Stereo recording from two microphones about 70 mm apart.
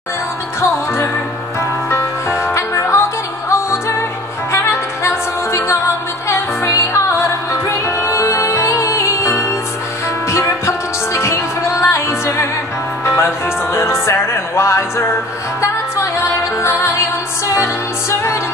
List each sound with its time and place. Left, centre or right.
1.9 s music: left
4.5 s music: left
16.6 s music: left